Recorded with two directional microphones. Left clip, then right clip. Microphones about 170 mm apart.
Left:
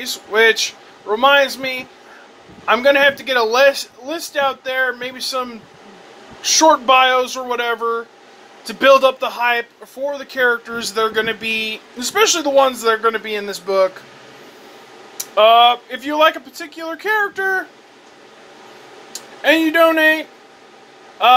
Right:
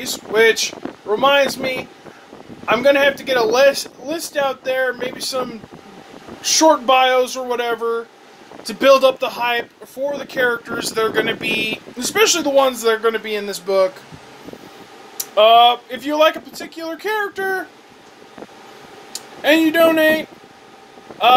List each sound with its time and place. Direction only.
0.0 s speech: 25° right (ahead or behind)
15.3 s speech: 15° right (ahead or behind)
19.1 s speech: 15° right (ahead or behind)